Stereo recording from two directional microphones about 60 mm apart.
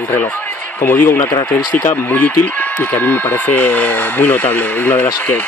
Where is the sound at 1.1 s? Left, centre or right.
Left.